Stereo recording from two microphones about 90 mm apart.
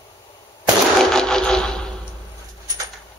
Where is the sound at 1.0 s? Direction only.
5° left (ahead or behind).